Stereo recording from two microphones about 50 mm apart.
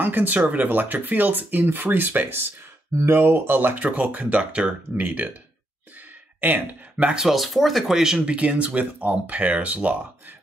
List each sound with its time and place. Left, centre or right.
0.0 s speech: right
4.4 s speech: right
6.4 s speech: right
7.2 s speech: centre
8.4 s speech: right